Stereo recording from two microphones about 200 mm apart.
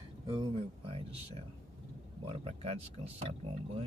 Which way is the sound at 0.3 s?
25° right (ahead or behind).